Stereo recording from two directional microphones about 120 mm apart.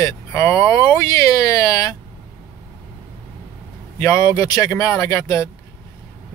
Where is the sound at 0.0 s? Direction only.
25° left (ahead or behind).